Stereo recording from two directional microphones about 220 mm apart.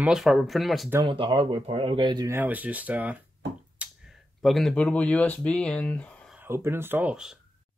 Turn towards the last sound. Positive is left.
turn(degrees=-5)  # may be behind; listen again after turning